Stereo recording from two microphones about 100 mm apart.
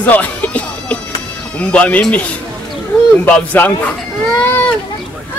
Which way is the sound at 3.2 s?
15° left (ahead or behind).